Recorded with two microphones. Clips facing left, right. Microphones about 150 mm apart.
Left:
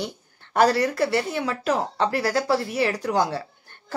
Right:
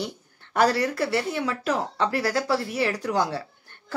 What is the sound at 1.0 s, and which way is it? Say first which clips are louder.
Speech: left 2 dB; 15° left (ahead or behind).